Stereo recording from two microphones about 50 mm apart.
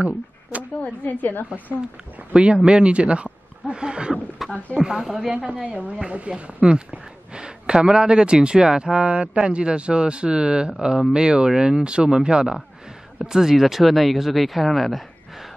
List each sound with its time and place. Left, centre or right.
0.0 s a sound: right
0.7 s a woman's voice: left
2.3 s speech: right
4.4 s speech: centre
5.3 s speech: right; by 15.0 s centre